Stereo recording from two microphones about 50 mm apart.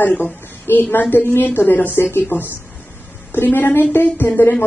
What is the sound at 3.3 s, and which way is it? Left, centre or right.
Speech, left.